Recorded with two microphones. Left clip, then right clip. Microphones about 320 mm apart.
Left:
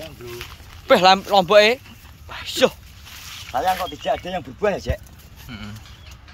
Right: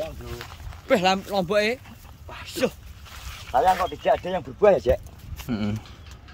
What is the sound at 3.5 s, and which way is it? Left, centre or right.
Speech, right.